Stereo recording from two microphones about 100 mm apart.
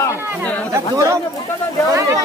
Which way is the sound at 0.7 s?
30° right (ahead or behind).